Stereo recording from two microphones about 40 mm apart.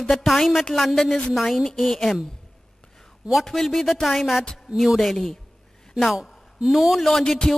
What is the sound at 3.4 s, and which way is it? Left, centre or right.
Speech, centre.